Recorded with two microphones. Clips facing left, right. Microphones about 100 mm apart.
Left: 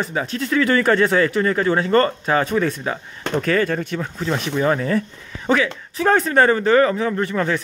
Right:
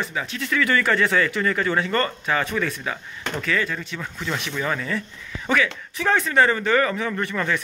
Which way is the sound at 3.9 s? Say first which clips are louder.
Left 6 dB; 35° left (ahead or behind).